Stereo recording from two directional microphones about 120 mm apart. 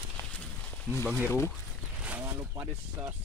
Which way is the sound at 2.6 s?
15° right (ahead or behind).